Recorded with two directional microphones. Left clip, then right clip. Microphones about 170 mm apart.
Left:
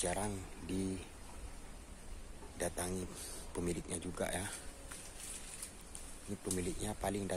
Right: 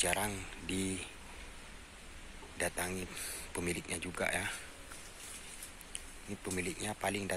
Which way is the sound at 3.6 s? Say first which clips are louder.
Right 3 dB; 15° left (ahead or behind).